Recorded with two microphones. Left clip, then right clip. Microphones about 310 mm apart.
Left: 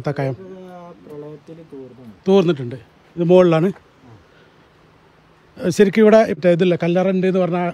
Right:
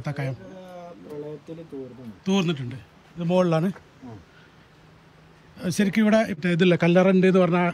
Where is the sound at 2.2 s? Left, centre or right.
Centre.